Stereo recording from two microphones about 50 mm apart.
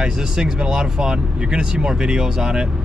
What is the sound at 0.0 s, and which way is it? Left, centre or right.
Speech, centre.